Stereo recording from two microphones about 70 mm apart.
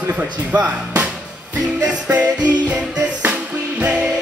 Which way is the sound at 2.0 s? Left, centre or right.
Centre.